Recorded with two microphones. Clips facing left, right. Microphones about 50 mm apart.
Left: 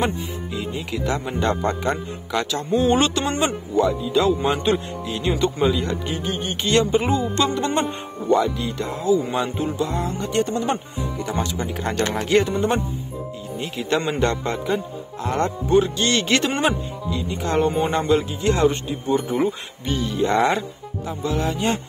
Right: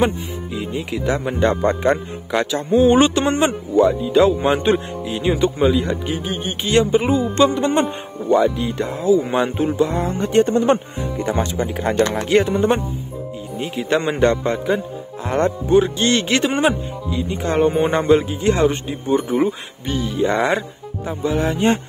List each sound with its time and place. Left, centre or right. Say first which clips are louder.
0.0 s speech: right 4 dB; centre
4.5 s speech: right 4 dB; right
5.0 s speech: right 4 dB; centre
7.4 s speech: right 5 dB; centre
8.7 s speech: right 2 dB; right
11.6 s speech: right 8 dB; centre
13.6 s speech: right 3 dB; centre
17.3 s speech: right 4 dB; right
19.2 s speech: right 3 dB; centre
21.0 s speech: right 4 dB; right